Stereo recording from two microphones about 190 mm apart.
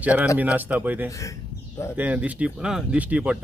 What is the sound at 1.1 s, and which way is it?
Speech, 15° left (ahead or behind).